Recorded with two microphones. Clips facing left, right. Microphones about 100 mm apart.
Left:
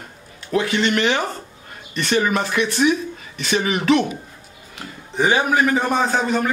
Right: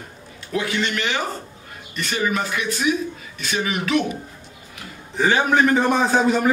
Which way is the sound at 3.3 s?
80° left.